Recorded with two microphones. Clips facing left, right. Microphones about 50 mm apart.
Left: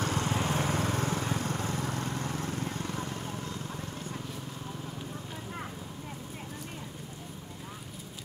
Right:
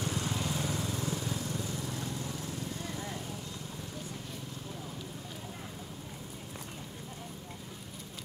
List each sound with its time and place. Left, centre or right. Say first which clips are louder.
0.0 s lawn mower: left 4 dB; left